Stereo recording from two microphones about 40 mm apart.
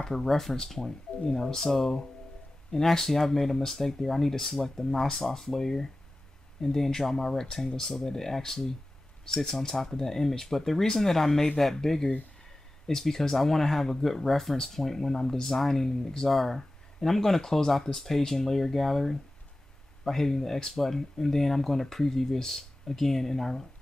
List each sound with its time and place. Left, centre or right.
0.0 s speech: centre